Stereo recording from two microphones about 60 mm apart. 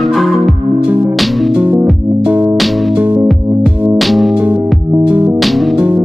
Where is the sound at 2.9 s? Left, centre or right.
Centre.